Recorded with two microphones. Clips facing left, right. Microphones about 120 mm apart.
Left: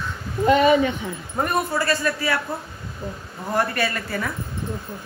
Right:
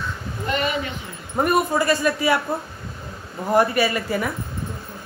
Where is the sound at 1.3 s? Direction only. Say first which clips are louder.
Right 4 dB; 15° right (ahead or behind).